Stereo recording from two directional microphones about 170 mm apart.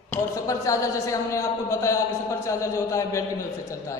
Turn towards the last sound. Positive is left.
turn(degrees=15)  # may be behind; listen again after turning